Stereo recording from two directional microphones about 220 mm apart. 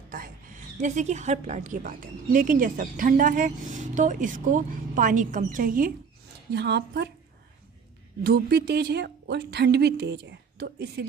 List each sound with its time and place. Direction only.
0.7 s a woman's voice: 30° right (ahead or behind); by 7.1 s 50° right (ahead or behind)
8.2 s a woman's voice: 45° right (ahead or behind)